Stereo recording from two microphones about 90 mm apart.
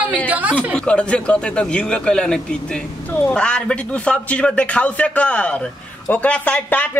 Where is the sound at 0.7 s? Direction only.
10° left (ahead or behind).